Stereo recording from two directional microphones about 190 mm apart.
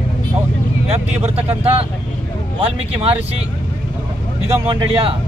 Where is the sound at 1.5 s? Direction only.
30° right (ahead or behind).